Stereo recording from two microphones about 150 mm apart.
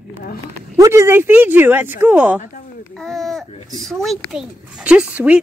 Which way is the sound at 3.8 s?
Centre (ahead or behind).